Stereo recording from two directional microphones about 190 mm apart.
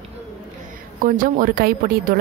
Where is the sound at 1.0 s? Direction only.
45° right (ahead or behind).